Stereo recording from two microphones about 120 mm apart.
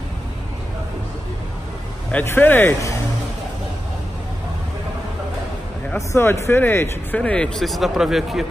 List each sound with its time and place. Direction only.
2.1 s speech: 15° left (ahead or behind)
5.9 s speech: 20° left (ahead or behind); by 8.5 s centre (ahead or behind)